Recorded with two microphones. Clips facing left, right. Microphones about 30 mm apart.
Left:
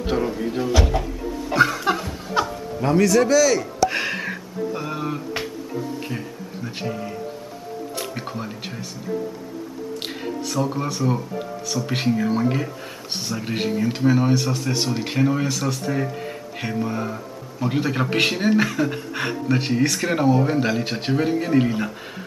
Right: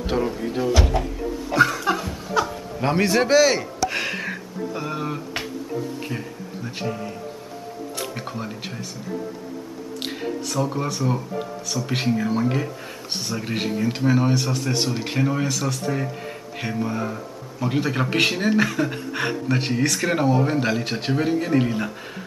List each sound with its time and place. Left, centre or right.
0.0 s speech: centre
1.6 s music: centre
2.4 s music: left
2.8 s a man's voice: right
3.8 s music: centre
8.0 s speech: centre
10.0 s speech: centre